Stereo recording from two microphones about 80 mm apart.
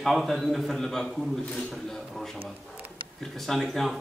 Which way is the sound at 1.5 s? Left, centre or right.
Centre.